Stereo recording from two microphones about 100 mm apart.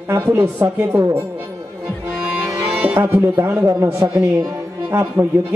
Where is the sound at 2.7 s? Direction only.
15° right (ahead or behind).